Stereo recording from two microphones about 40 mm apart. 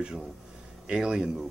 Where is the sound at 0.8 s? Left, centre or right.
Right.